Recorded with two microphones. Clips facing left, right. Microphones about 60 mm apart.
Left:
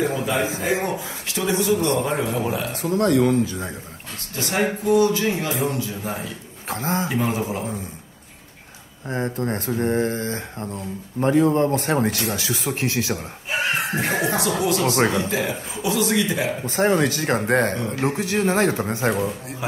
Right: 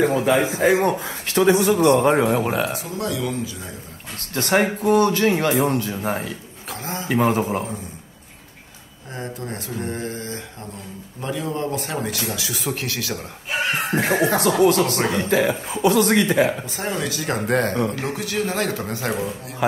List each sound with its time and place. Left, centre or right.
0.0 s speech: right
2.7 s speech: left
4.4 s speech: right
6.7 s a man's voice: left
7.1 s speech: right
9.1 s a man's voice: left
13.8 s speech: right
16.6 s speech: left
17.5 s speech: left
17.7 s speech: right
18.1 s a man's voice: left